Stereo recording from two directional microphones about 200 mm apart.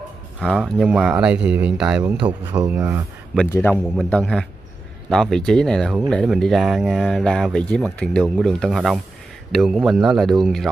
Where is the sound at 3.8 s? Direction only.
Centre (ahead or behind).